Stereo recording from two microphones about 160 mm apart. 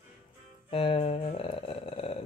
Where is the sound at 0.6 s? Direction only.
35° left (ahead or behind).